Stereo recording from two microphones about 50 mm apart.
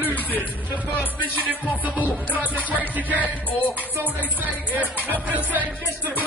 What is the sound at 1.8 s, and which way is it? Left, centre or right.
Music, right.